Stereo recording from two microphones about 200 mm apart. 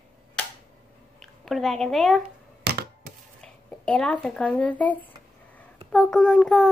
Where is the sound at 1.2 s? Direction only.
Centre (ahead or behind).